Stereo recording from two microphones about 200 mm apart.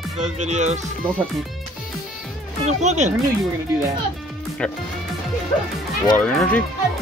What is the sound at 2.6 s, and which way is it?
Music, 35° right (ahead or behind).